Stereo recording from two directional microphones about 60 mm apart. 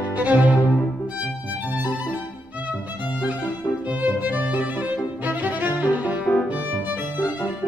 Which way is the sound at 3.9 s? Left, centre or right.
Right.